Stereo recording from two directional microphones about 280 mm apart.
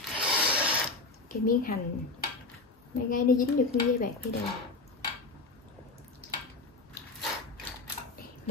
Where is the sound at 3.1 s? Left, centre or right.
Left.